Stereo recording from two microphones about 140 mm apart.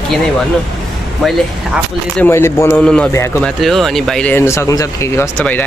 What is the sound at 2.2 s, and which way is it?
Speech, 20° left (ahead or behind).